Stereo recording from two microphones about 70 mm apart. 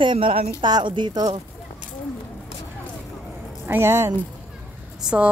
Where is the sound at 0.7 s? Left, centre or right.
Right.